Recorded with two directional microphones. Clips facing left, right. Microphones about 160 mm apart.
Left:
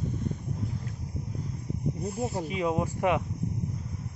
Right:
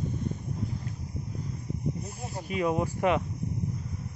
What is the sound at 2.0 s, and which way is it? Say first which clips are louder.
Speech: left 7 dB; 25° left (ahead or behind).